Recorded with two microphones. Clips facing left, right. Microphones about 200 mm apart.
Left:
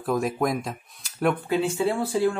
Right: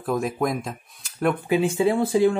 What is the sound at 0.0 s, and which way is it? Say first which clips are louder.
Speech: even; centre (ahead or behind).